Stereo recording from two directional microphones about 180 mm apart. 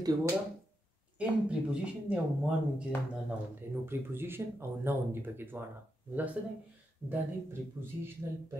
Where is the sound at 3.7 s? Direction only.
10° right (ahead or behind).